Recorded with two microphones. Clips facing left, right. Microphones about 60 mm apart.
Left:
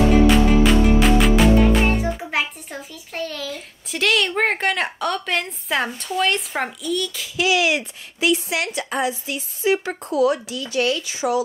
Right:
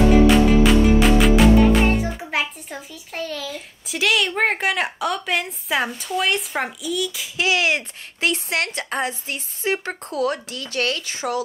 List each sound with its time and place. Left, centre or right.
0.7 s a child's voice: centre
7.3 s a woman's voice: right